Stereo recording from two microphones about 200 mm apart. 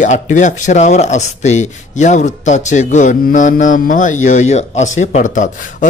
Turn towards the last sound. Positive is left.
turn(degrees=40)  # may be behind; listen again after turning